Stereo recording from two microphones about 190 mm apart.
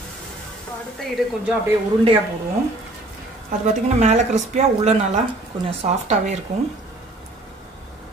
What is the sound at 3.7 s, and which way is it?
Speech, 40° right (ahead or behind).